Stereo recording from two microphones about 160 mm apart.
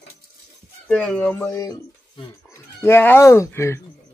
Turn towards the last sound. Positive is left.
turn(degrees=15)  # may be behind; listen again after turning